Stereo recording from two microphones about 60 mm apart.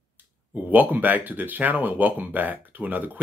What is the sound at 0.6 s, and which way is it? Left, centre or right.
Speech, right.